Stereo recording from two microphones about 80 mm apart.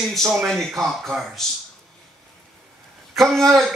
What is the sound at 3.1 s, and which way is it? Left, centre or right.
Speech, centre.